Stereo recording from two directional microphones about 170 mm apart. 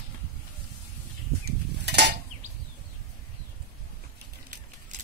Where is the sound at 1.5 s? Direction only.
80° right.